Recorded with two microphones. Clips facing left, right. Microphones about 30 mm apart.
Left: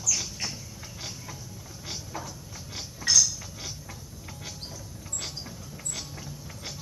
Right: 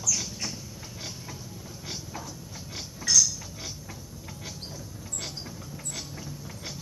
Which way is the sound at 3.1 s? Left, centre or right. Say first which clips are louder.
Even; left.